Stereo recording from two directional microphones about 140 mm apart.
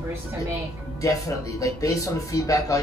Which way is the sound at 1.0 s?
25° left (ahead or behind).